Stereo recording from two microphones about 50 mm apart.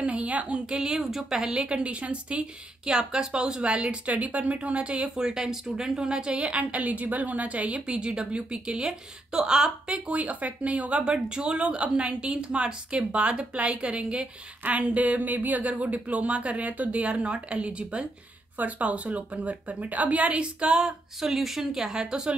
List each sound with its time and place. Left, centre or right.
0.0 s a sound: right
0.7 s a woman's voice: centre
14.6 s a woman's voice: right; by 22.3 s centre